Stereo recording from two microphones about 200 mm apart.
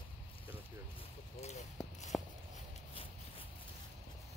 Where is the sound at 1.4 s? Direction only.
35° left (ahead or behind).